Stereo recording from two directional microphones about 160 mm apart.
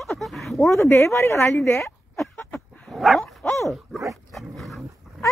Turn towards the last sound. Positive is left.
turn(degrees=0)  # may be behind; listen again after turning